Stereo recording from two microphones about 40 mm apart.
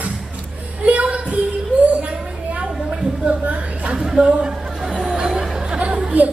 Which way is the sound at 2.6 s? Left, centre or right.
Right.